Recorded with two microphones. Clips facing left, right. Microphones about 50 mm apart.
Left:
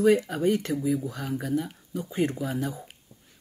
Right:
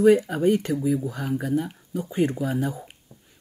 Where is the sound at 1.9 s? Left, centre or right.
Right.